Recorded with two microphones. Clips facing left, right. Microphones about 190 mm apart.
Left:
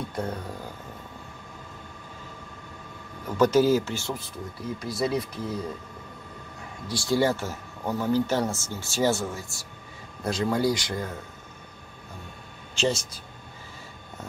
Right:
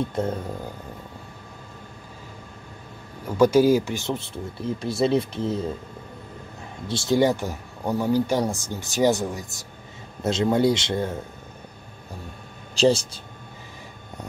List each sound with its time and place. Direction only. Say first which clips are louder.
0.1 s speech: right 5 dB; 25° right (ahead or behind)
3.3 s speech: right 3 dB; 10° right (ahead or behind)
6.9 s speech: right 4 dB; 20° right (ahead or behind)
12.7 s speech: right 7 dB; 35° right (ahead or behind)